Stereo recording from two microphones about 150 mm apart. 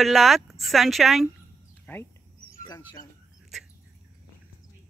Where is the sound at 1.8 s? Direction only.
15° left (ahead or behind).